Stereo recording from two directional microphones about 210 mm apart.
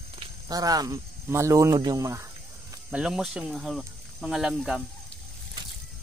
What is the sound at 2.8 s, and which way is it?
Speech, 5° right (ahead or behind).